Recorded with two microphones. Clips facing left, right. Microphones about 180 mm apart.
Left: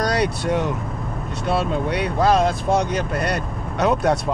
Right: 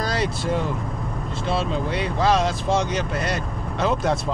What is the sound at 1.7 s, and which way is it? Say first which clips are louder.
Speech: left 2 dB; 60° left (ahead or behind).